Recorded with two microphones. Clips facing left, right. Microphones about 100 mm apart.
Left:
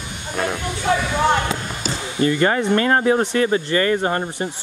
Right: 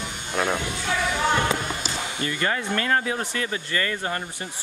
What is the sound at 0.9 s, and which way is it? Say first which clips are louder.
Speech: left 8 dB; 45° left (ahead or behind).